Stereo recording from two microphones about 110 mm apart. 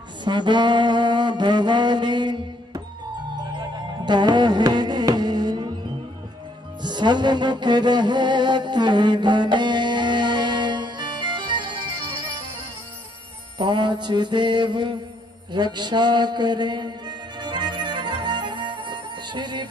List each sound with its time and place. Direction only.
0.2 s music: 45° right (ahead or behind)
6.8 s music: 40° right (ahead or behind)
13.6 s music: 45° right (ahead or behind)